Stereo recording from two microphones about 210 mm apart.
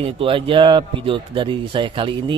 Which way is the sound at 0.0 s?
25° right (ahead or behind).